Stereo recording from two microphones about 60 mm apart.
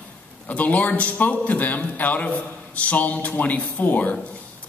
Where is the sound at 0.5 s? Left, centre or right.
Left.